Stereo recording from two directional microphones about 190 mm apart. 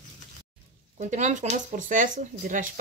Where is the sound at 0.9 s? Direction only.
40° right (ahead or behind).